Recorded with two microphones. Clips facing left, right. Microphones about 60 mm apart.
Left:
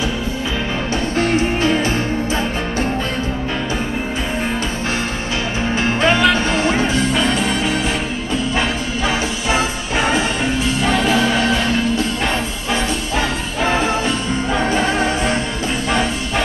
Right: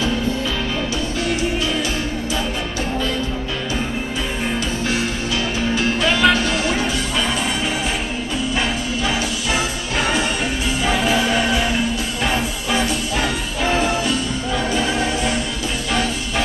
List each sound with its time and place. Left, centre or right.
1.1 s music: left
5.8 s music: left
8.5 s music: left
10.9 s music: centre
14.6 s music: left